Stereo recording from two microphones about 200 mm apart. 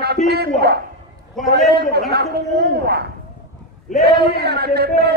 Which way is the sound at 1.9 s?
55° right (ahead or behind).